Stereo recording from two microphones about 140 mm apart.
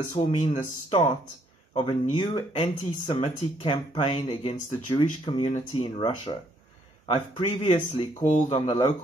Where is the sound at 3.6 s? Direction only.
40° left (ahead or behind).